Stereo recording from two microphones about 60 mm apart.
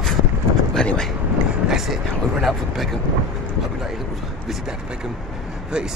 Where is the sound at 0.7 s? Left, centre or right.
Centre.